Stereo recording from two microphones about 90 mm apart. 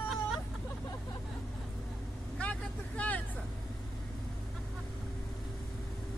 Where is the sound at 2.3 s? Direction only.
15° left (ahead or behind).